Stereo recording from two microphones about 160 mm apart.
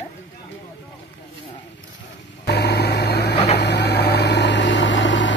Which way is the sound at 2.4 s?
90° left.